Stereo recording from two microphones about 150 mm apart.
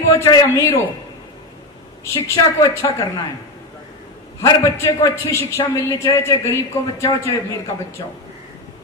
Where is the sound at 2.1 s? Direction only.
20° left (ahead or behind).